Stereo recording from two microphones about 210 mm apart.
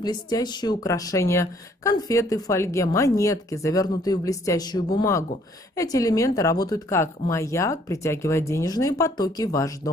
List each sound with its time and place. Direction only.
0.0 s speech: 20° left (ahead or behind)